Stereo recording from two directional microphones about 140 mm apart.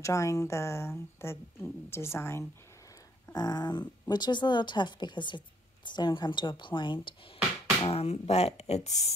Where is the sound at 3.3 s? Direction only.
30° left (ahead or behind).